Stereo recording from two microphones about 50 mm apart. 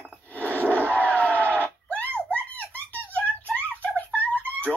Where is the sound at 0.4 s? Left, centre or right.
Right.